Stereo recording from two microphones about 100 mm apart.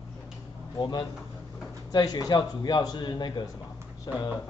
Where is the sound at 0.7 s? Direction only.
45° left (ahead or behind).